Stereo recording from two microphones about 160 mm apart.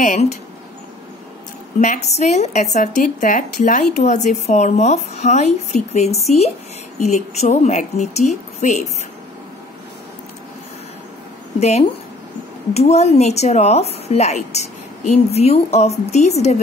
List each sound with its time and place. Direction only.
0.0 s a woman's voice: 55° left (ahead or behind)
1.8 s a woman's voice: 45° left (ahead or behind)
12.7 s a woman's voice: 40° left (ahead or behind)